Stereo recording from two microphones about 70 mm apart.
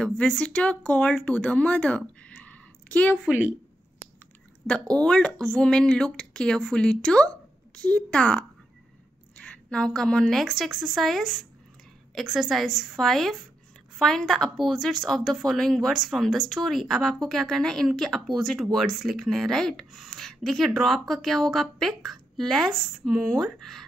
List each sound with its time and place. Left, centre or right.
0.0 s speech: centre
5.0 s a woman's voice: centre
10.4 s speech: centre